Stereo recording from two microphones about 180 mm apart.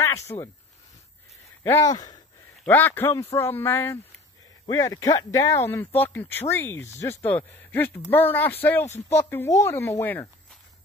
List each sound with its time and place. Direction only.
0.0 s speech: 15° left (ahead or behind)
1.6 s speech: 15° left (ahead or behind)
2.6 s speech: 10° left (ahead or behind)